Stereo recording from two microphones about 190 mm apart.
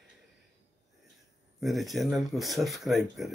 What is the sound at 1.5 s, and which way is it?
Speech, centre (ahead or behind).